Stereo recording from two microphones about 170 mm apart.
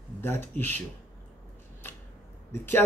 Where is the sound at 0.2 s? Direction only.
10° left (ahead or behind).